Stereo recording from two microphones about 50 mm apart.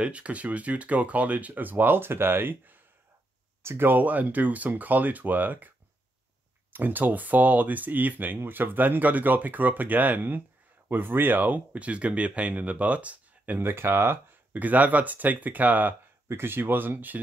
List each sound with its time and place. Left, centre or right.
0.0 s speech: right
6.7 s speech: right
13.6 s speech: right
14.5 s speech: right
16.3 s speech: right